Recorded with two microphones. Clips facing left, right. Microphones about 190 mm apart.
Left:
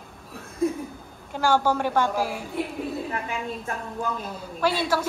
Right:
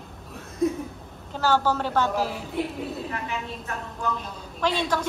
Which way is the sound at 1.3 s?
10° left (ahead or behind).